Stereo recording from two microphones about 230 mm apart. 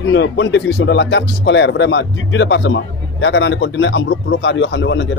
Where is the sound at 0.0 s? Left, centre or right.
Left.